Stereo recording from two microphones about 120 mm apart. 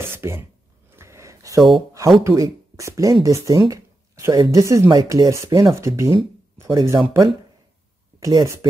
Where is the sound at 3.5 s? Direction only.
30° right (ahead or behind).